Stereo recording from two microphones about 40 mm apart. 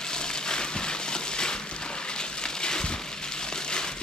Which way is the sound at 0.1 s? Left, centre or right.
Centre.